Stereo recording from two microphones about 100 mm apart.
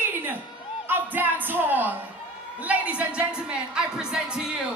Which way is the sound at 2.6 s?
15° right (ahead or behind).